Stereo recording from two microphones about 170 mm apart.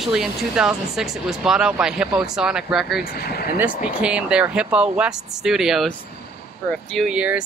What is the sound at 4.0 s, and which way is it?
Speech, 5° right (ahead or behind).